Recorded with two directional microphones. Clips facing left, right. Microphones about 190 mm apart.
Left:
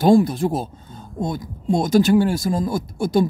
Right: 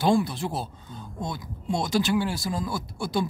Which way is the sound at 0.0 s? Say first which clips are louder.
Left 8 dB; 45° left (ahead or behind).